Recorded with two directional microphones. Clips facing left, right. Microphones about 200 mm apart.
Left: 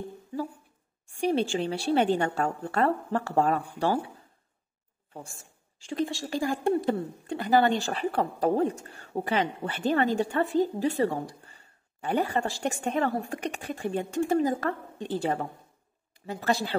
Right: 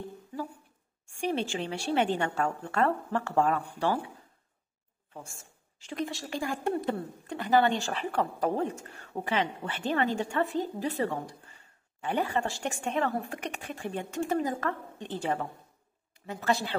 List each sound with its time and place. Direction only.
1.2 s a woman's voice: 35° left (ahead or behind)
5.8 s a woman's voice: 30° left (ahead or behind)